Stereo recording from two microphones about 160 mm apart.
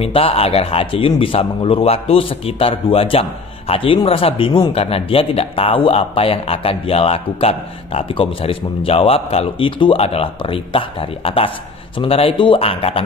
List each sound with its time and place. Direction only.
0.0 s a man's voice: 35° left (ahead or behind)